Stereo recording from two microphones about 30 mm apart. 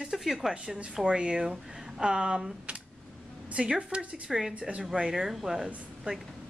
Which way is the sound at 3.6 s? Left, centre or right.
Right.